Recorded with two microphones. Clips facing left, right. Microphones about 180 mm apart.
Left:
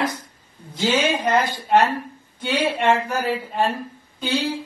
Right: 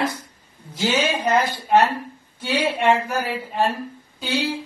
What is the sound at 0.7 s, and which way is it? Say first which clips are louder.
Speech: left 1 dB; 10° right (ahead or behind).